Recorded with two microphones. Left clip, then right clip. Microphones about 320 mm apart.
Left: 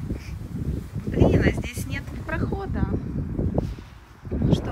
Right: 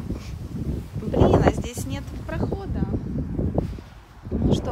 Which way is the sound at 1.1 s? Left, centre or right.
Centre.